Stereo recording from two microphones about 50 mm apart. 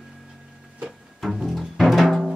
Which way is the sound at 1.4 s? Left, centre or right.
Centre.